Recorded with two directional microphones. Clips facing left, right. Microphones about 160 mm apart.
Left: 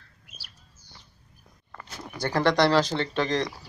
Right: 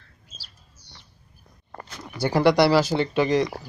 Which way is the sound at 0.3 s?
15° left (ahead or behind).